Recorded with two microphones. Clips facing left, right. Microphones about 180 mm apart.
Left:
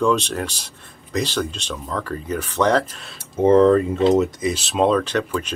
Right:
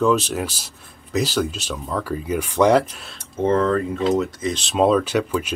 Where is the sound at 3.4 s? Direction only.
15° left (ahead or behind).